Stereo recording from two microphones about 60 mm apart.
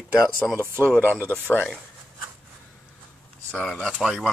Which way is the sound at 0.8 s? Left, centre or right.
Right.